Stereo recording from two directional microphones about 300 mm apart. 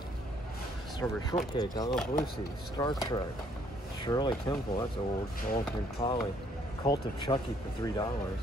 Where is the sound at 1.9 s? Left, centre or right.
Centre.